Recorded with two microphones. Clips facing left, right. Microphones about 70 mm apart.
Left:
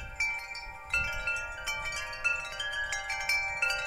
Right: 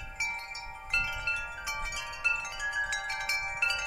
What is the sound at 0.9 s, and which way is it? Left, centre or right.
Wind chime, centre.